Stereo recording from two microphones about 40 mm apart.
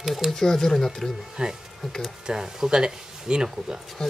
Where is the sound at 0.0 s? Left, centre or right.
Centre.